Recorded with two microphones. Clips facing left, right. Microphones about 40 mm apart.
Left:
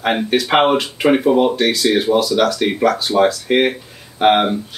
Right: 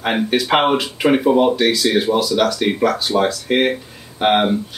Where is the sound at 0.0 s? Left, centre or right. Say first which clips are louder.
Left 1 dB; centre.